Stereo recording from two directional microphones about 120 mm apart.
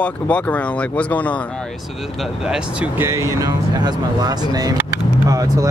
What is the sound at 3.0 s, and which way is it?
Speech, 25° right (ahead or behind).